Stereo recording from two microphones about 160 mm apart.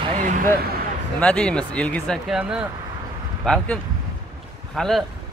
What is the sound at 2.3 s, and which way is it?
Speech, 5° right (ahead or behind).